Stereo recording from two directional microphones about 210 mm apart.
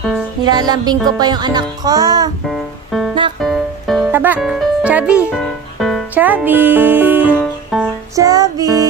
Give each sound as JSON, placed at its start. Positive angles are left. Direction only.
{"t": 0.4, "sound": "music", "side_deg": -20}
{"t": 2.4, "sound": "music", "side_deg": 0}